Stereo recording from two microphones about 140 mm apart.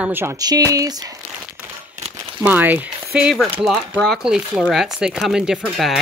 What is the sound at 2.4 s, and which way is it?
Speech, 10° right (ahead or behind).